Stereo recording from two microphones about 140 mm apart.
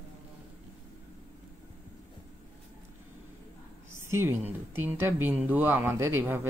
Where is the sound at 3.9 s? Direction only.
20° right (ahead or behind).